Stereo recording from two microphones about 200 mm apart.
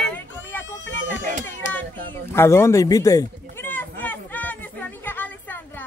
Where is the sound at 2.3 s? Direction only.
15° left (ahead or behind).